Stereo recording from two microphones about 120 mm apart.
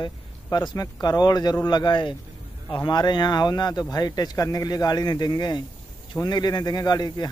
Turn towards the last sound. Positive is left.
turn(degrees=35)  # may be behind; listen again after turning